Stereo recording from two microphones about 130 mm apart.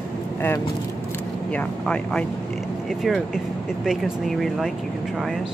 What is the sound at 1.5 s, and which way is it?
Speech, 10° left (ahead or behind).